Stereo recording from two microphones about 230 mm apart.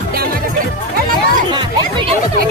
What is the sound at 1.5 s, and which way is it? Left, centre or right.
Music, centre.